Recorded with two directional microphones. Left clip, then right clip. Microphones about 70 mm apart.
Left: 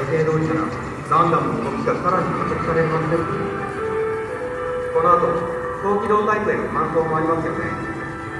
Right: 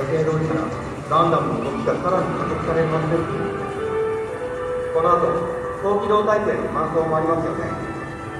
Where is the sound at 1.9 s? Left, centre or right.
Left.